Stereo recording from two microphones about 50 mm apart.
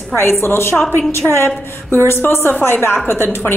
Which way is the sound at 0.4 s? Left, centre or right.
Left.